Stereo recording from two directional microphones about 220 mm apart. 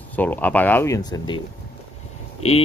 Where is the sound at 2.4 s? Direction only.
30° left (ahead or behind).